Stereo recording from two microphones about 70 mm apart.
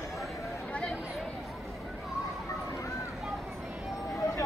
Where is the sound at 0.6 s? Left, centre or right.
Centre.